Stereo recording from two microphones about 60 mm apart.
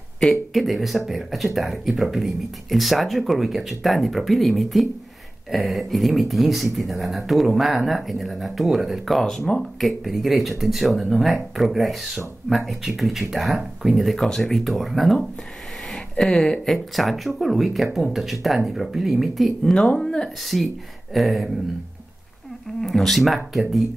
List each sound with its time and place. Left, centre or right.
0.2 s speech: centre
15.9 s a sound: centre
16.6 s speech: centre
20.4 s speech: centre
22.8 s speech: centre